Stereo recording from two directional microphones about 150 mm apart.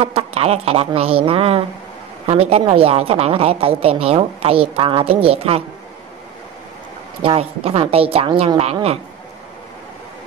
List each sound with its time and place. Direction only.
0.0 s a woman's voice: 45° right (ahead or behind)
7.2 s a woman's voice: 40° right (ahead or behind)